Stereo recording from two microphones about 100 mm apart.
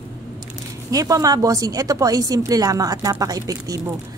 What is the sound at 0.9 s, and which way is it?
A woman's voice, 35° right (ahead or behind).